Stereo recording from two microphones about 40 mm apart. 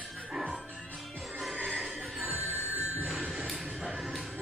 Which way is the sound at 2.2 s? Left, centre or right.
Right.